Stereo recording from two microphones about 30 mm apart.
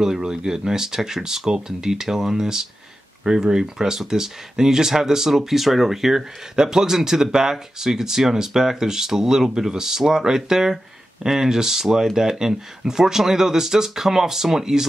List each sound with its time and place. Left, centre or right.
0.0 s speech: centre